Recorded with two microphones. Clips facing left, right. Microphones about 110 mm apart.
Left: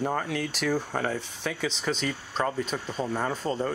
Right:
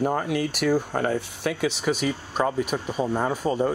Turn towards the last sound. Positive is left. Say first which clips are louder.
# right 5 dB
turn(degrees=-15)  # may be behind; listen again after turning